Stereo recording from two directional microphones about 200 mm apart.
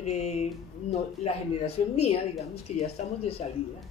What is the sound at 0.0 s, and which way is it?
Speech, 35° left (ahead or behind).